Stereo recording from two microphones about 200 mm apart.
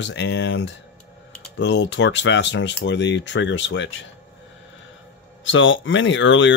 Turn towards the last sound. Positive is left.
turn(degrees=65)  # may be behind; listen again after turning